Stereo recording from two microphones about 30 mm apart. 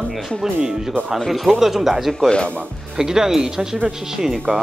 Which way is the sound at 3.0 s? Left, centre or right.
Centre.